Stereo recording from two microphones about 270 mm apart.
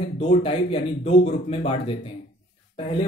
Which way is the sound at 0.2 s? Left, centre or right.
Centre.